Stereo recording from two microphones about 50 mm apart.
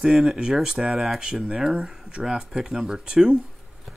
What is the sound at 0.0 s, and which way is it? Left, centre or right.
Speech, centre.